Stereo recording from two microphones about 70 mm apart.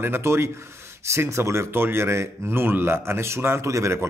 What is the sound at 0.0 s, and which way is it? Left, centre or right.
Speech, right.